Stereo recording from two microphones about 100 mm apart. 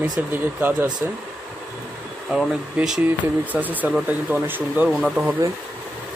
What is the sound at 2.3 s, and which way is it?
Speech, 10° right (ahead or behind).